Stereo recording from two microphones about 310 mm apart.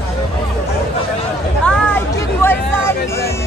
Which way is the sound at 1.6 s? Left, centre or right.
Centre.